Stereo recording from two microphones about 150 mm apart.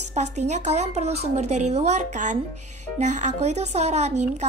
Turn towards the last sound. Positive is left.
turn(degrees=-50)  # may be behind; listen again after turning